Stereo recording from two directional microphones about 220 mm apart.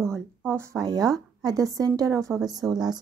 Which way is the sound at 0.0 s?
10° right (ahead or behind).